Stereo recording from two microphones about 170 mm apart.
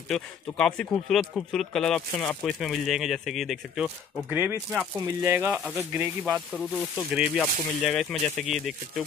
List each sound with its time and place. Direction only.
0.1 s speech: 5° left (ahead or behind)